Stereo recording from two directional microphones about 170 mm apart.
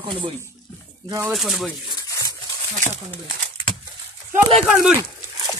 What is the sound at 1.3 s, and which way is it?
Speech, centre (ahead or behind).